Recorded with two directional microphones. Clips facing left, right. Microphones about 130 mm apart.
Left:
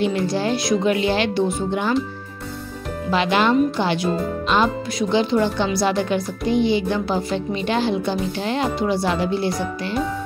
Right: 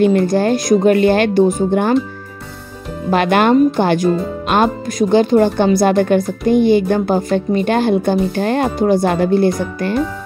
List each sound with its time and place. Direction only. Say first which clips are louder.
0.0 s speech: right 8 dB; 50° right (ahead or behind)
3.1 s speech: right 6 dB; 55° right (ahead or behind)